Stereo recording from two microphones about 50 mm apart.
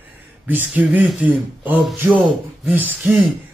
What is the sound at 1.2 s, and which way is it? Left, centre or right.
Speech, right.